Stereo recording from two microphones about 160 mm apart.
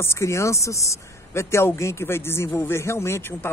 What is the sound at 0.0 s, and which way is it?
Speech, 15° left (ahead or behind).